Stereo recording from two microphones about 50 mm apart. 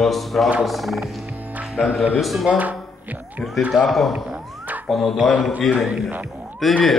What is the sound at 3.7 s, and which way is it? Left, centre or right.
Speech, centre.